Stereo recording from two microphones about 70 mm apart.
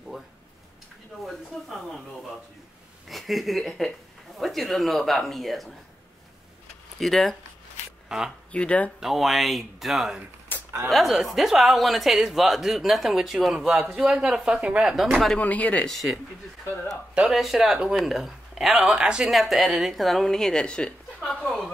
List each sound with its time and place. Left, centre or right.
1.5 s a sound: centre
3.1 s a woman's voice: centre
7.0 s a woman's voice: centre
8.1 s speech: centre
8.5 s speech: centre
9.0 s a woman's voice: centre
10.5 s a sound: left
10.9 s a woman's voice: centre
15.3 s speech: left
15.9 s a woman's voice: centre
18.9 s speech: centre
19.3 s a woman's voice: centre